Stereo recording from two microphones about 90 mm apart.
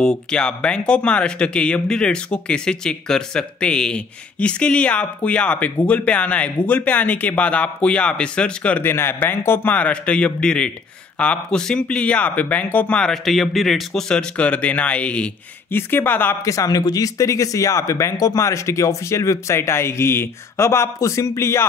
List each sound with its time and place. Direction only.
0.0 s a man's voice: 10° left (ahead or behind)
15.7 s a man's voice: 25° left (ahead or behind)
16.4 s speech: 40° left (ahead or behind)